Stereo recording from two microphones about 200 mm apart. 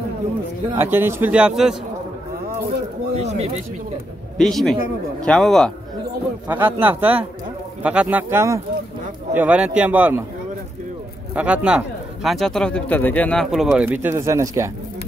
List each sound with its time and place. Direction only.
0.7 s a man's voice: 10° right (ahead or behind)
3.2 s speech: 30° right (ahead or behind)
4.4 s speech: centre (ahead or behind)
6.4 s a man's voice: 10° right (ahead or behind)
11.3 s speech: 5° right (ahead or behind)